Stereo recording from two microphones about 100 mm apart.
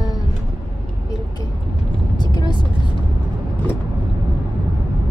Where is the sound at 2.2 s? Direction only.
45° left (ahead or behind).